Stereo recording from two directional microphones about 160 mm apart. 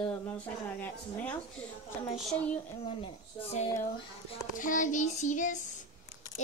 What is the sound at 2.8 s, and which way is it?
Speech, 40° left (ahead or behind).